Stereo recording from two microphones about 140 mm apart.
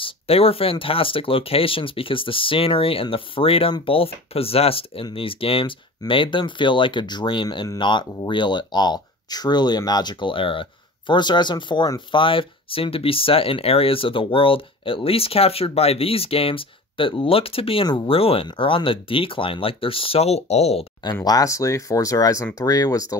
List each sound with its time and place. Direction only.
0.0 s speech: 45° left (ahead or behind)
21.0 s speech: 30° left (ahead or behind)